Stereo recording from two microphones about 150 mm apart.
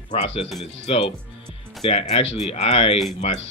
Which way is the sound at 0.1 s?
45° left (ahead or behind).